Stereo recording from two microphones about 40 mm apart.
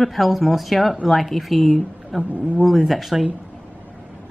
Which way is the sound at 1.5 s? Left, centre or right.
Left.